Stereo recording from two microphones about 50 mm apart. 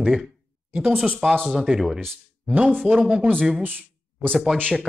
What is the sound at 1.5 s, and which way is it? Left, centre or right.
Speech, centre.